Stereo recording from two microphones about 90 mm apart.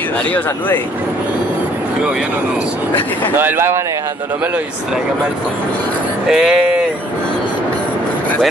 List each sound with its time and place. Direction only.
3.3 s speech: 25° right (ahead or behind)
6.2 s speech: 5° right (ahead or behind)